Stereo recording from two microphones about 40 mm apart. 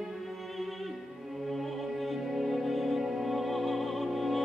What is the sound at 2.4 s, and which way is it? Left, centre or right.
Music, centre.